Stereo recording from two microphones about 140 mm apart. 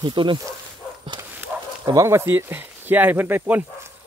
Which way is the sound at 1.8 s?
25° right (ahead or behind).